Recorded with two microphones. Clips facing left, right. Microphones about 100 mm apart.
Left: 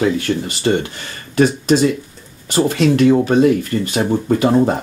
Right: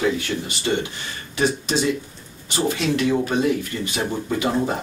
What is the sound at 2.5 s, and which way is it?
Speech, 50° left (ahead or behind).